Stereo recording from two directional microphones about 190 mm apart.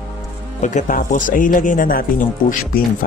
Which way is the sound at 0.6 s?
40° left (ahead or behind).